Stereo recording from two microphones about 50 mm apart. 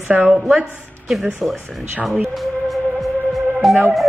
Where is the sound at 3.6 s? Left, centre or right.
Centre.